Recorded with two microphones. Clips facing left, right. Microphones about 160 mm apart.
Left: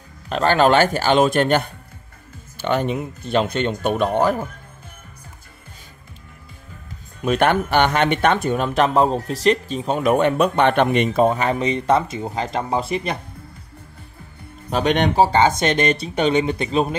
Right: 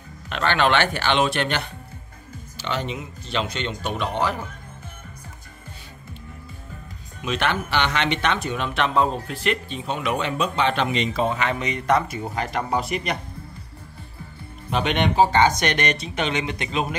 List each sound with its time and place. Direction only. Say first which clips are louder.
0.3 s speech: left 5 dB; 40° left (ahead or behind)
7.2 s speech: left 7 dB; 50° left (ahead or behind); by 13.2 s 30° left (ahead or behind)
14.7 s speech: left 4 dB; 40° left (ahead or behind)